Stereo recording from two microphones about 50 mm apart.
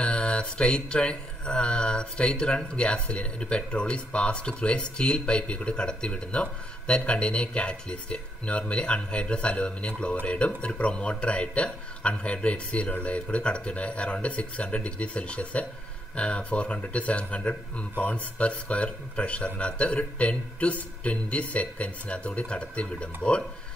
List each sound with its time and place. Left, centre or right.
0.0 s speech: centre